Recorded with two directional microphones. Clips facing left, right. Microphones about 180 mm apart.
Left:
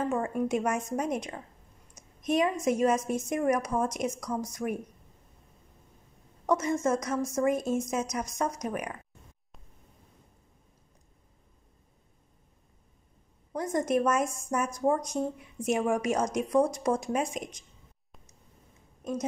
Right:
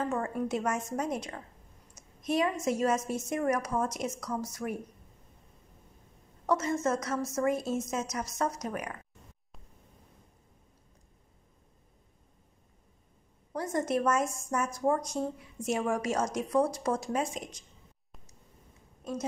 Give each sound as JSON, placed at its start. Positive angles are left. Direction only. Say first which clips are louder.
{"t": 0.1, "sound": "speech", "louder": "left 3 dB", "side_deg": 15}
{"t": 6.4, "sound": "speech", "louder": "left 2 dB", "side_deg": 15}
{"t": 13.6, "sound": "speech", "louder": "left 3 dB", "side_deg": 15}